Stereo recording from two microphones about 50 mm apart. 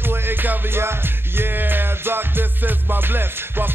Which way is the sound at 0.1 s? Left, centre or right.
Right.